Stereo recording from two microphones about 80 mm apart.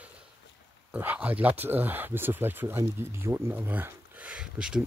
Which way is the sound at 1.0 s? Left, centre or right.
Right.